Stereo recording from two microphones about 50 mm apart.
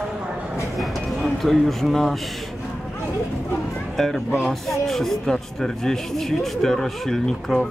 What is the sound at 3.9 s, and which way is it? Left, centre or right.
Speech, centre.